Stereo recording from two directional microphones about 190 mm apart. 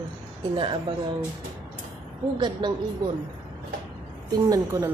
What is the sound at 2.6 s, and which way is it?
Speech, 25° right (ahead or behind).